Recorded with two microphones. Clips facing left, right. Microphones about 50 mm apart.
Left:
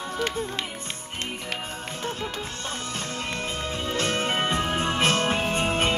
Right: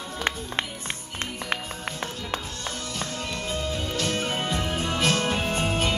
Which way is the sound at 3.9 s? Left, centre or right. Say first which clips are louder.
Left 4 dB; left.